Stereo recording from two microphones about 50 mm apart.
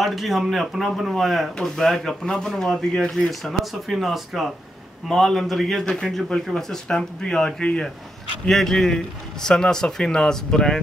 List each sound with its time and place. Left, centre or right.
0.0 s a man's voice: centre
3.4 s a man's voice: centre